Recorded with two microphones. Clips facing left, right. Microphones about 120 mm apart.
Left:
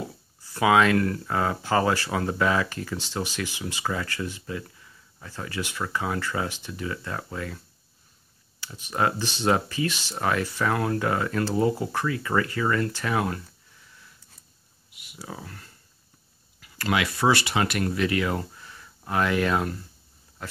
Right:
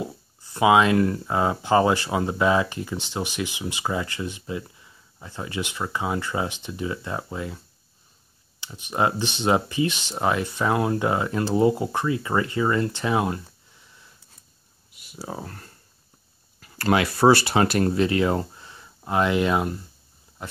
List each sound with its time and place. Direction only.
0.4 s speech: 20° right (ahead or behind)
14.9 s a sound: 35° right (ahead or behind)
16.5 s speech: 40° right (ahead or behind); by 19.8 s 20° right (ahead or behind)